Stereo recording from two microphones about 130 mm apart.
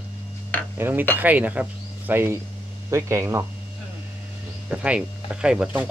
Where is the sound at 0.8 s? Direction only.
15° right (ahead or behind).